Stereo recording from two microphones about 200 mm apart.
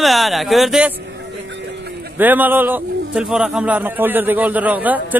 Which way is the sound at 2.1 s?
10° right (ahead or behind).